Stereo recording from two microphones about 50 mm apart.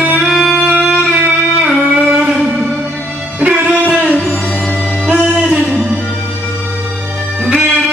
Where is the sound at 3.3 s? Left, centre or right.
Right.